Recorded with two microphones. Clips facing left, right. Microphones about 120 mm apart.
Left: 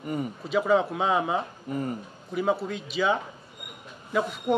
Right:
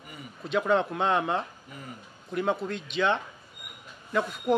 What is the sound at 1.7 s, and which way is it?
Speech, 50° left (ahead or behind).